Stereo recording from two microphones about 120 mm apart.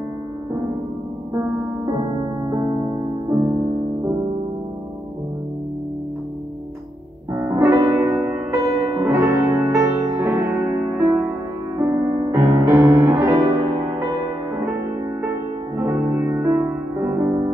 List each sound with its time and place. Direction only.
7.3 s music: 20° right (ahead or behind)
15.8 s music: 20° right (ahead or behind)